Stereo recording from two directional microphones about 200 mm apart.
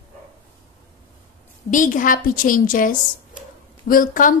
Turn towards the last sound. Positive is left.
turn(degrees=40)  # may be behind; listen again after turning